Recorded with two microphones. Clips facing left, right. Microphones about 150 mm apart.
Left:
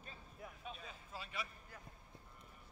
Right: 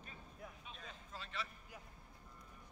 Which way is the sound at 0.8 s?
10° left (ahead or behind).